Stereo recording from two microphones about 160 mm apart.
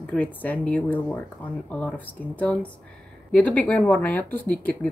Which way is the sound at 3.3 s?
10° left (ahead or behind).